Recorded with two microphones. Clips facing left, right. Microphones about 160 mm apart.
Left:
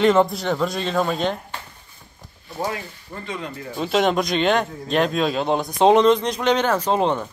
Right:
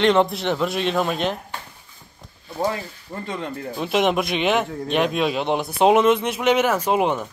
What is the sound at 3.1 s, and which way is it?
Speech, 25° right (ahead or behind).